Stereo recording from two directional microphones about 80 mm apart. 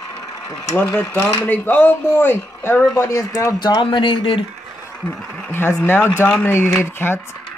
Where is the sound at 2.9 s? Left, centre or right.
Left.